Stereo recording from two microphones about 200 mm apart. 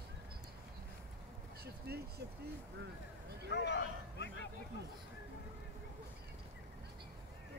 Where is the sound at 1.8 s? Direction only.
55° right (ahead or behind).